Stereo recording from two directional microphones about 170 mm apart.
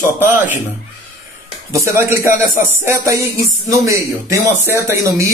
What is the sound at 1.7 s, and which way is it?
A man's voice, 15° right (ahead or behind).